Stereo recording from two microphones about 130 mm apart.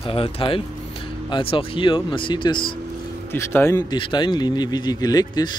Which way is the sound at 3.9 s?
40° left (ahead or behind).